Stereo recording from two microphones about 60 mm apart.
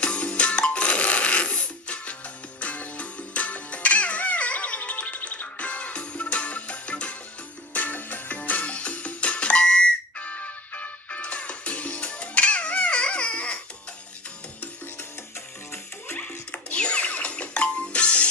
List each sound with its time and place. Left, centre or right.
0.0 s music: centre
16.1 s music: left